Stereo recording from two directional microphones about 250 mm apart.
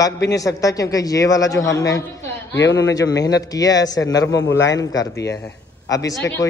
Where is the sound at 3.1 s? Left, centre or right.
Centre.